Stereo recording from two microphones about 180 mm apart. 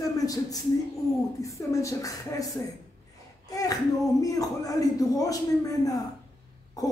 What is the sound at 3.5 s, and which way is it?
A man's voice, 20° left (ahead or behind).